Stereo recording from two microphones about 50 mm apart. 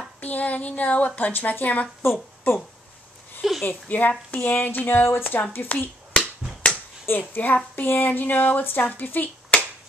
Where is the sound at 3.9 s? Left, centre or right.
Left.